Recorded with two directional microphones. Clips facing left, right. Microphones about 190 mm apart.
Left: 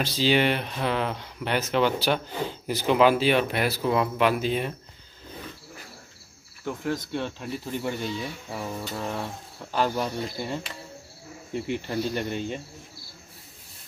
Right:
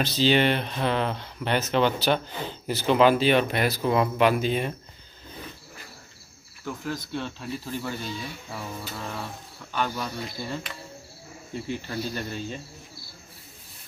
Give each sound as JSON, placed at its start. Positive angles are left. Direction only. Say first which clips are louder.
{"t": 0.0, "sound": "speech", "louder": "right 1 dB", "side_deg": 10}
{"t": 6.6, "sound": "speech", "louder": "left 3 dB", "side_deg": 25}
{"t": 9.8, "sound": "speech", "louder": "left 4 dB", "side_deg": 15}